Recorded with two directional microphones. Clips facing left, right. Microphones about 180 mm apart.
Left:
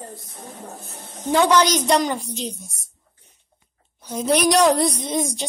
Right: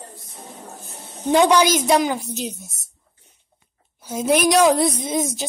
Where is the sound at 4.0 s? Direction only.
5° right (ahead or behind).